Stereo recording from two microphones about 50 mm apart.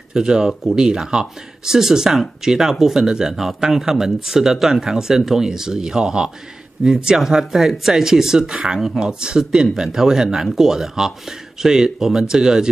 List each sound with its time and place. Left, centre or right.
0.1 s speech: centre
7.2 s speech: centre